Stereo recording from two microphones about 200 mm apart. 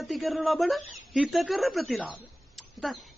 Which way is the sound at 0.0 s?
Centre (ahead or behind).